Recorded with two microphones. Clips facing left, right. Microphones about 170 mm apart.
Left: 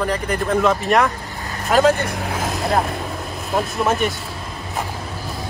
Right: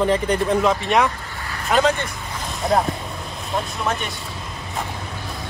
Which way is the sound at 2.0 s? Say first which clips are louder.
Left 7 dB; 75° left (ahead or behind).